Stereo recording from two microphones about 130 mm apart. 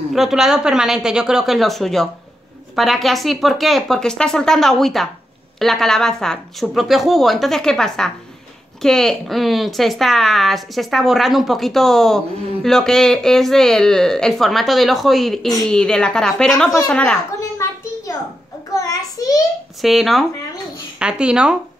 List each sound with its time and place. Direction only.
0.1 s a woman's voice: centre (ahead or behind)
17.6 s a sound: 20° left (ahead or behind)
18.7 s a child's voice: 25° left (ahead or behind)
19.8 s speech: centre (ahead or behind)